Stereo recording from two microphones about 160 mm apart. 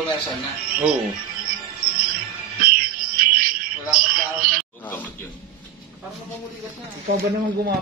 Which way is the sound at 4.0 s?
60° right (ahead or behind).